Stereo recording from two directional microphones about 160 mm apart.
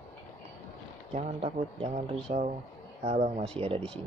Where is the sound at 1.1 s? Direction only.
45° right (ahead or behind).